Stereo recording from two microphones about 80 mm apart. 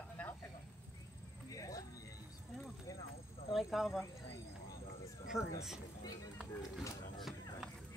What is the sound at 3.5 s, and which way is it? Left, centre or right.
Speech, centre.